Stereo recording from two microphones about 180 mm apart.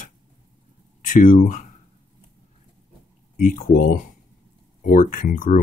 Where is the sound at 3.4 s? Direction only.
50° left (ahead or behind).